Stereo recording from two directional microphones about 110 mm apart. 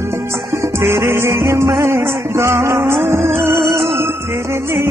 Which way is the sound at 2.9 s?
90° right.